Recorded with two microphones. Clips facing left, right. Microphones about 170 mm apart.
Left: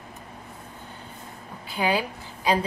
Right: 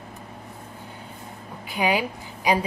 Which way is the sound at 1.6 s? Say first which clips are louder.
Right 1 dB; 15° right (ahead or behind).